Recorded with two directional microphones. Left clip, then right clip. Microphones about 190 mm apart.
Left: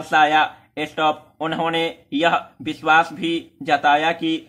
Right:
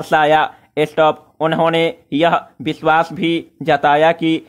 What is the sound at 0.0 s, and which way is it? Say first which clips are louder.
Speech: right 3 dB; 40° right (ahead or behind).